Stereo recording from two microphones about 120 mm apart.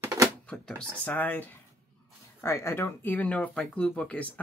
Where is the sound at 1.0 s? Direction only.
15° left (ahead or behind).